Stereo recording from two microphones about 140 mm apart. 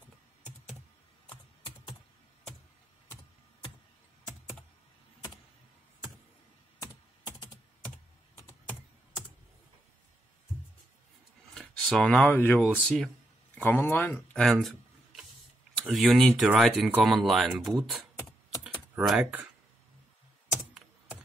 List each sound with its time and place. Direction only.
1.3 s typing: 35° left (ahead or behind)
6.8 s computer keyboard: 25° left (ahead or behind)
8.4 s typing: 20° left (ahead or behind)
11.5 s a sound: 5° left (ahead or behind)
12.4 s speech: 5° left (ahead or behind)
13.6 s speech: 15° left (ahead or behind)
15.8 s speech: centre (ahead or behind)
19.0 s speech: 10° right (ahead or behind)